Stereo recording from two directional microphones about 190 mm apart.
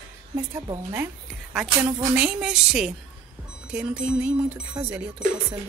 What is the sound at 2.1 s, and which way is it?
A woman's voice, 5° right (ahead or behind).